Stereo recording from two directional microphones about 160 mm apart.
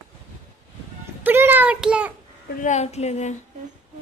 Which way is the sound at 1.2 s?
15° right (ahead or behind).